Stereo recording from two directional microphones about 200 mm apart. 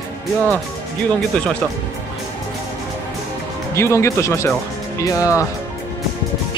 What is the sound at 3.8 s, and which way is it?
Speech, 15° left (ahead or behind).